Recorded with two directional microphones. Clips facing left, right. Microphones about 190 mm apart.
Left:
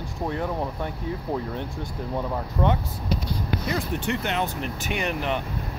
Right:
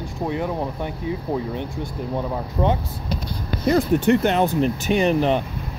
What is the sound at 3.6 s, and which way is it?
Speech, 45° right (ahead or behind).